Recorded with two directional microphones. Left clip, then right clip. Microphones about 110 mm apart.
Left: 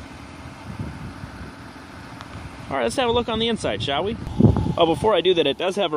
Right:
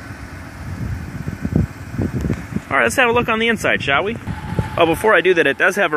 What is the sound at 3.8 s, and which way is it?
Speech, 25° left (ahead or behind).